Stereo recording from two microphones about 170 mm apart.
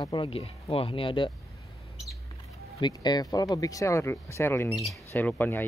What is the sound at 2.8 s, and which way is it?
Speech, 25° left (ahead or behind).